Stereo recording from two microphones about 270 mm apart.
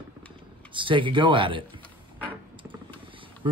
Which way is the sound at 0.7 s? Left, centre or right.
Centre.